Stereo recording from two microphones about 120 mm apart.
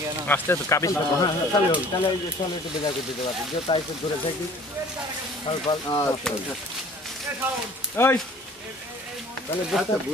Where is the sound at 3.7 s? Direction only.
45° left (ahead or behind).